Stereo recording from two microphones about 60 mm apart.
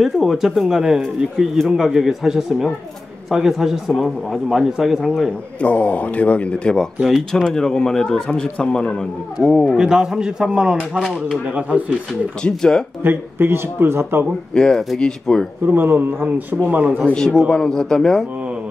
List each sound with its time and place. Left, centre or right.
0.0 s a man's voice: centre
5.6 s a man's voice: left
7.0 s a man's voice: centre
7.4 s speech: centre
9.8 s a man's voice: centre
12.4 s speech: centre
13.0 s speech: right
14.5 s speech: centre
15.6 s speech: right
16.6 s a man's voice: right
17.1 s speech: centre